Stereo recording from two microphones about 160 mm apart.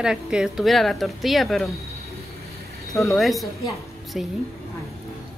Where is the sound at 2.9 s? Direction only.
Centre (ahead or behind).